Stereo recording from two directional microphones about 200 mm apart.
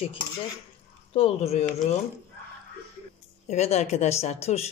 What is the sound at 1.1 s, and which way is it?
Speech, 30° left (ahead or behind).